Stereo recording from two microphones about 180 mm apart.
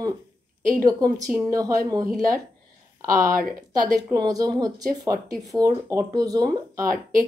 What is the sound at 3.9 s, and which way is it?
Speech, 20° right (ahead or behind).